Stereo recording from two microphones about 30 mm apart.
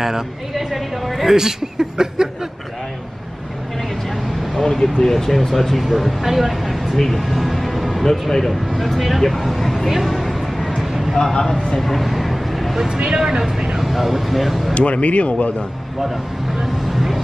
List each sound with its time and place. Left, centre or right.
0.0 s speech: centre
1.3 s speech: centre
4.6 s speech: centre
7.0 s speech: centre
8.1 s speech: centre
8.5 s speech: centre
9.8 s a sound: centre
10.8 s vehicle: centre
11.7 s a sound: centre
12.8 s speech: right
13.2 s speech: centre
14.7 s speech: left
16.6 s speech: centre